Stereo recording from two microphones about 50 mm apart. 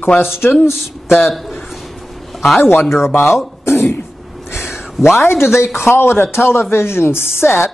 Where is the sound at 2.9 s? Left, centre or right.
Left.